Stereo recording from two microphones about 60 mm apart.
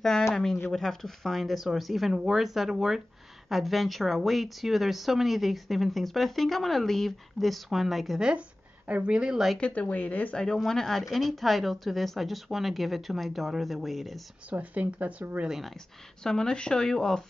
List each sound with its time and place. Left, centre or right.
0.3 s speech: centre
8.2 s speech: centre
9.1 s speech: centre
9.6 s speech: left
10.3 s speech: centre
14.5 s speech: right
15.4 s speech: centre
16.2 s speech: centre